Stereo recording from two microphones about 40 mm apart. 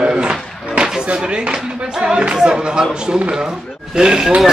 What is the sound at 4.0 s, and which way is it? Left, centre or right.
Speech, centre.